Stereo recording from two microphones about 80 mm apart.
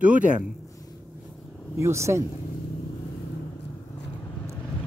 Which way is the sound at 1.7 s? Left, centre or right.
Right.